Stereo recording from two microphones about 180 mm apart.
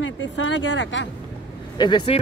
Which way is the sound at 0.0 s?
90° left.